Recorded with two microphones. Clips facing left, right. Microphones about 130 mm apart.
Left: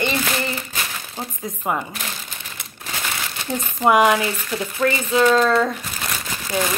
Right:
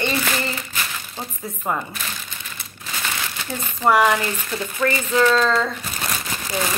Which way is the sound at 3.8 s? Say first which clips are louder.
Left 1 dB; 15° left (ahead or behind).